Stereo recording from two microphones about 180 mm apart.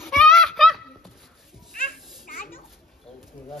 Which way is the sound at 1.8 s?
50° left (ahead or behind).